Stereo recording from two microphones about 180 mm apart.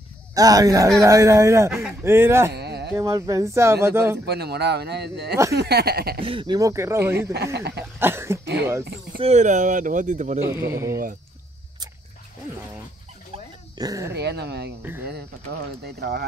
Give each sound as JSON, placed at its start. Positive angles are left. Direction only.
{"t": 0.3, "sound": "speech", "side_deg": -20}
{"t": 2.5, "sound": "a sound", "side_deg": -65}
{"t": 3.0, "sound": "speech", "side_deg": -15}
{"t": 4.3, "sound": "a man's voice", "side_deg": -65}
{"t": 6.2, "sound": "speech", "side_deg": -25}
{"t": 7.5, "sound": "speech", "side_deg": -70}
{"t": 8.0, "sound": "speech", "side_deg": -15}
{"t": 9.2, "sound": "speech", "side_deg": -40}
{"t": 10.4, "sound": "speech", "side_deg": -15}
{"t": 13.7, "sound": "speech", "side_deg": -20}
{"t": 14.1, "sound": "speech", "side_deg": -65}
{"t": 14.8, "sound": "speech", "side_deg": -10}
{"t": 15.8, "sound": "a man's voice", "side_deg": -65}